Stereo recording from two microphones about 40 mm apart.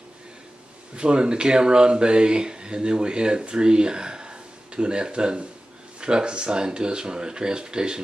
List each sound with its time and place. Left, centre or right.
0.9 s speech: right